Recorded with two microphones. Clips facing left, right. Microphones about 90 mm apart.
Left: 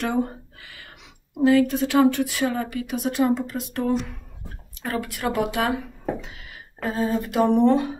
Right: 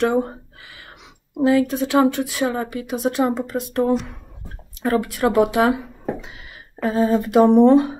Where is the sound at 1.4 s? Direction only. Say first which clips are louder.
Right 1 dB; 20° right (ahead or behind).